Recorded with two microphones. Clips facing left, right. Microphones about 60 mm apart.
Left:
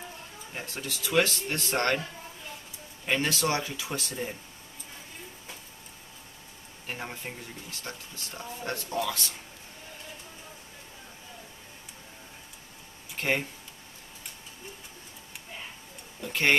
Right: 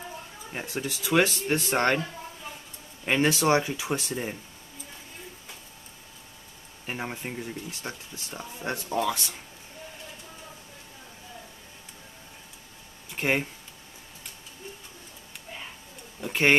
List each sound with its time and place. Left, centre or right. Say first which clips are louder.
0.5 s speech: right 5 dB; centre
3.1 s speech: right 5 dB; right
6.9 s speech: right 4 dB; centre
13.1 s speech: right 2 dB; centre
16.2 s speech: right 3 dB; right